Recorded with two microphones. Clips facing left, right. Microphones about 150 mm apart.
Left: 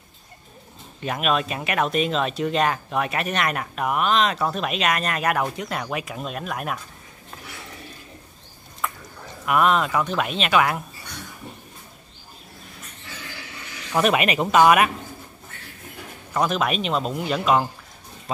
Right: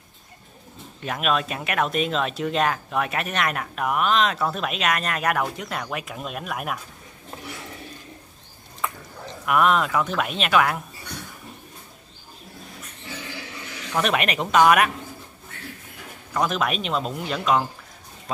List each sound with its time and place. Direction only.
1.0 s speech: centre (ahead or behind)
9.5 s speech: centre (ahead or behind)
13.9 s speech: 5° left (ahead or behind)
16.3 s speech: centre (ahead or behind)